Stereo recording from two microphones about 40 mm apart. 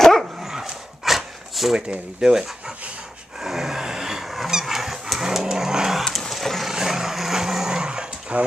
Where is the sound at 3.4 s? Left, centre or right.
Centre.